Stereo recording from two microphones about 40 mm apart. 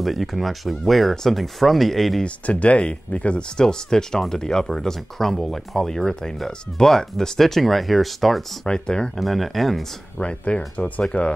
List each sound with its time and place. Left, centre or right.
0.0 s speech: centre
2.2 s speech: left
3.5 s speech: centre
8.6 s speech: left
9.1 s speech: centre
10.1 s speech: left